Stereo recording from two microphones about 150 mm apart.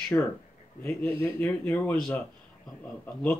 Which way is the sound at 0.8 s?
15° left (ahead or behind).